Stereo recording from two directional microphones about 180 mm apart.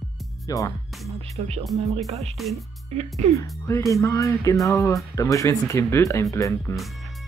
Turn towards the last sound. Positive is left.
turn(degrees=15)  # may be behind; listen again after turning